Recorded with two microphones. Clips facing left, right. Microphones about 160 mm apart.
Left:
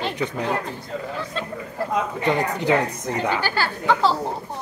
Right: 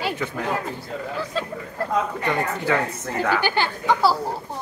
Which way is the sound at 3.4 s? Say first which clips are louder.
Even; 20° right (ahead or behind).